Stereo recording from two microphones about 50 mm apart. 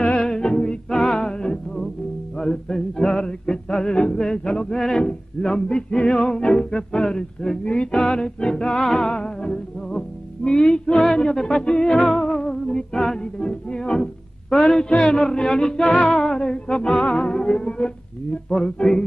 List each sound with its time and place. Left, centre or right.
0.0 s music: centre